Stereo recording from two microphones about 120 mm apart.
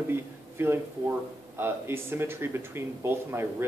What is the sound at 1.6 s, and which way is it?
Speech, 20° right (ahead or behind).